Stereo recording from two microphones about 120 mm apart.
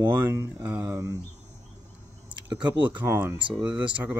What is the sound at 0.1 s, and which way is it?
Speech, 20° right (ahead or behind).